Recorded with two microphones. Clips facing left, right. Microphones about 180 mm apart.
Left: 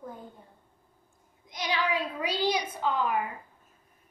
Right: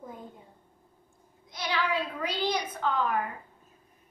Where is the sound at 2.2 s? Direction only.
10° left (ahead or behind).